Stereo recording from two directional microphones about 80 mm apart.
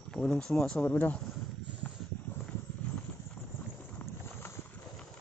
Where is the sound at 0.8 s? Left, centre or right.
Left.